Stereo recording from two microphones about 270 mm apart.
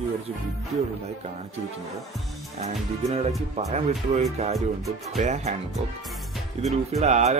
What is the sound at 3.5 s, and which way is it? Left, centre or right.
Speech, right.